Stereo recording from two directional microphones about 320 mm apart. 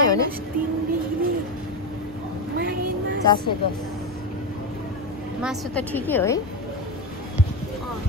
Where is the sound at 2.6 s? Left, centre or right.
Right.